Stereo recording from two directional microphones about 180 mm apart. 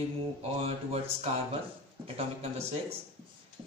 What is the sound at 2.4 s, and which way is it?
Speech, 35° right (ahead or behind).